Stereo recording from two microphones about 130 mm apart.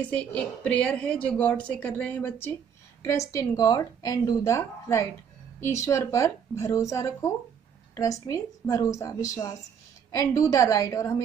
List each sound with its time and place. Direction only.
0.0 s a woman's voice: 10° left (ahead or behind)